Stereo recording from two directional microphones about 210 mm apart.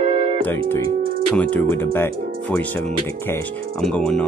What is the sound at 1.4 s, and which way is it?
Speech, 10° left (ahead or behind).